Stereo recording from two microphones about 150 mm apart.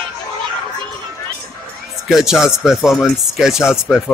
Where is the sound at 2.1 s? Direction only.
Centre (ahead or behind).